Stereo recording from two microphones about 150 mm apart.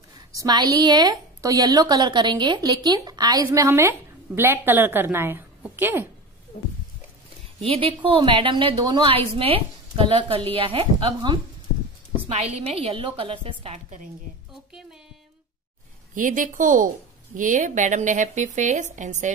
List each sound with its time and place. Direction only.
0.3 s a woman's voice: 25° right (ahead or behind)
7.6 s a woman's voice: 40° right (ahead or behind)
13.8 s speech: 55° right (ahead or behind)
14.5 s music: 5° right (ahead or behind)
16.2 s speech: 60° right (ahead or behind)